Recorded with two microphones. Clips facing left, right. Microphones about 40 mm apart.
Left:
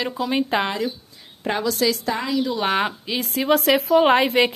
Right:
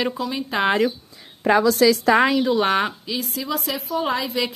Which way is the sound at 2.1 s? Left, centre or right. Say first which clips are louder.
Right 10 dB; right.